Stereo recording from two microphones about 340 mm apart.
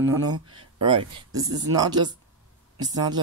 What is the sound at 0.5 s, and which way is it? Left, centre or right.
Speech, centre.